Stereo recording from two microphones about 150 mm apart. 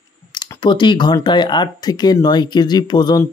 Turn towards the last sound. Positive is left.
turn(degrees=30)  # may be behind; listen again after turning